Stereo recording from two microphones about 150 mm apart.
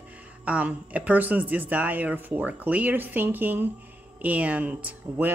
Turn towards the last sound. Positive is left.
turn(degrees=-10)  # may be behind; listen again after turning